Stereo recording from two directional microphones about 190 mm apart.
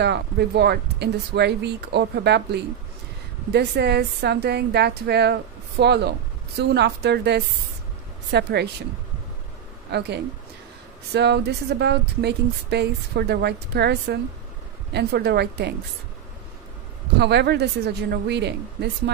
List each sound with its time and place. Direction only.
0.0 s speech: 60° right (ahead or behind)
9.8 s speech: 60° right (ahead or behind)
17.2 s speech: 60° right (ahead or behind)